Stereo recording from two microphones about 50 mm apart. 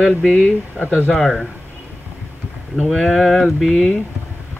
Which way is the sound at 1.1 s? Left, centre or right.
Centre.